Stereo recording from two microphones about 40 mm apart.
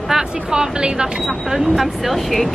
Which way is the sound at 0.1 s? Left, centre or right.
Centre.